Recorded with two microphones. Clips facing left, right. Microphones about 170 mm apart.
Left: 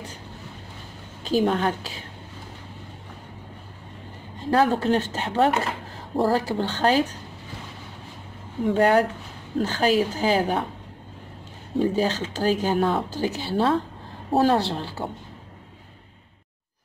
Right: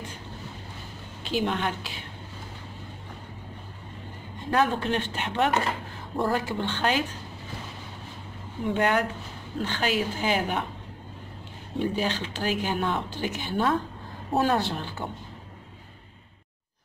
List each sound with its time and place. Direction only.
1.2 s a woman's voice: 40° left (ahead or behind)
4.5 s speech: 35° left (ahead or behind)
8.7 s speech: 35° left (ahead or behind)
11.8 s speech: 40° left (ahead or behind)